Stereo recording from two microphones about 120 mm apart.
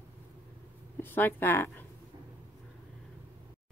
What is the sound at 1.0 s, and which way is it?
Speech, 15° left (ahead or behind).